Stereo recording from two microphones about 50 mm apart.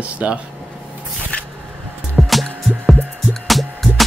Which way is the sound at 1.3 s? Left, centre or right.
Left.